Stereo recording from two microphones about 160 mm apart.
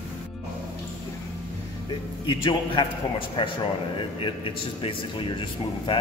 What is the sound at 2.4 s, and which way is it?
A man's voice, 35° left (ahead or behind).